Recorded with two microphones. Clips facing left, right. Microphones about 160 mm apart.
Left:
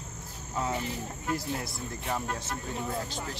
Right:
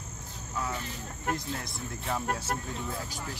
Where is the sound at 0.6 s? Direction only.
25° left (ahead or behind).